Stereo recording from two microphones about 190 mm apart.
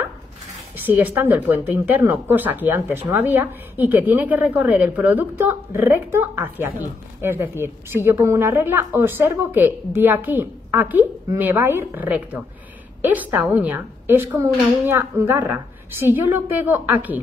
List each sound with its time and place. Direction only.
0.7 s a woman's voice: 10° right (ahead or behind)